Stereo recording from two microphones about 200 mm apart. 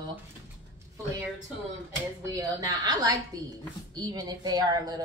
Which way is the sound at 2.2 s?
15° right (ahead or behind).